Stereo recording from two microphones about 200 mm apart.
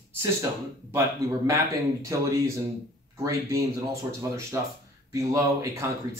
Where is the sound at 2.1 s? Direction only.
15° right (ahead or behind).